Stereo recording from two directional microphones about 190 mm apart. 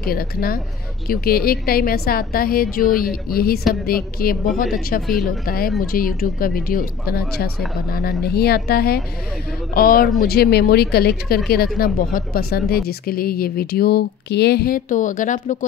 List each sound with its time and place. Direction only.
0.0 s speech: 50° left (ahead or behind)
5.0 s speech: centre (ahead or behind)
5.4 s speech: 50° left (ahead or behind)